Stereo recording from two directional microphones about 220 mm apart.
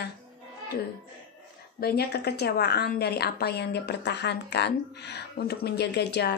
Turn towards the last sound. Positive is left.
turn(degrees=50)  # may be behind; listen again after turning